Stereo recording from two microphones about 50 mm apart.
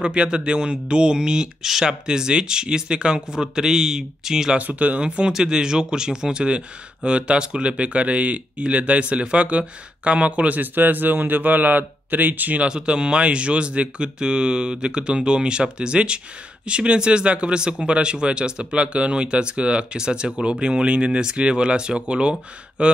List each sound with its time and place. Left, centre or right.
0.0 s speech: centre
4.6 s speech: right
12.6 s speech: centre